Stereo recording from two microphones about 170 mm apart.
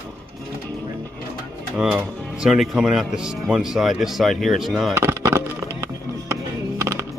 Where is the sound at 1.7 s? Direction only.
10° right (ahead or behind).